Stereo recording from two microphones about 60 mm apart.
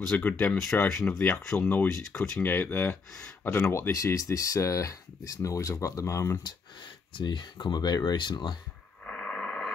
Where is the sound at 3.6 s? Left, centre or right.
Left.